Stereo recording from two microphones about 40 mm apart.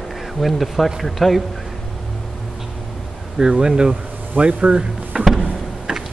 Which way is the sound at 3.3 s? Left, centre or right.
Centre.